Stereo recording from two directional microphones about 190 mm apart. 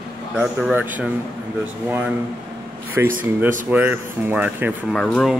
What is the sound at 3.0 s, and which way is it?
Speech, 10° right (ahead or behind).